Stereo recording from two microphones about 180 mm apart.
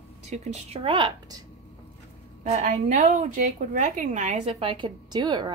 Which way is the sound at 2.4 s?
40° right (ahead or behind).